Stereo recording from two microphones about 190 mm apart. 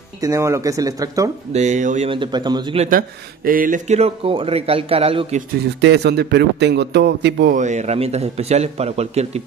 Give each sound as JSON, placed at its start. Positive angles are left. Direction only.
{"t": 0.2, "sound": "speech", "side_deg": -15}
{"t": 1.5, "sound": "speech", "side_deg": -35}
{"t": 2.0, "sound": "speech", "side_deg": -25}
{"t": 2.8, "sound": "speech", "side_deg": -45}
{"t": 5.8, "sound": "a man's voice", "side_deg": -65}
{"t": 7.5, "sound": "speech", "side_deg": -40}